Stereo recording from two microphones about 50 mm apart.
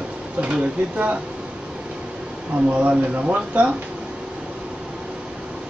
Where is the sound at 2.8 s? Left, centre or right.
Right.